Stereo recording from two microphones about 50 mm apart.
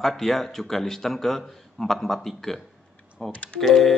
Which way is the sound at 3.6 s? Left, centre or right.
Centre.